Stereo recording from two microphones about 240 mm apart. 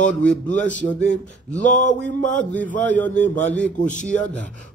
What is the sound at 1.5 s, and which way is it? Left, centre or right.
Speech, left.